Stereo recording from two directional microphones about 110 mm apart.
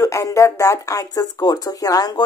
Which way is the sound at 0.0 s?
30° left (ahead or behind).